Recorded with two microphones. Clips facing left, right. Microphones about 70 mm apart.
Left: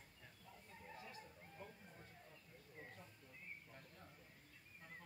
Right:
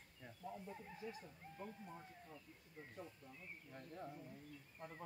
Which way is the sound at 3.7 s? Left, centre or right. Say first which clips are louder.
Right 9 dB; right.